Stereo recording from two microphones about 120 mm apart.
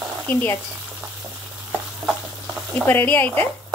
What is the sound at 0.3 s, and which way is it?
Speech, 15° left (ahead or behind).